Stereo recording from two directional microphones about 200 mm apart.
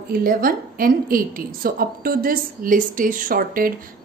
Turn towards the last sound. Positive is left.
turn(degrees=-45)  # may be behind; listen again after turning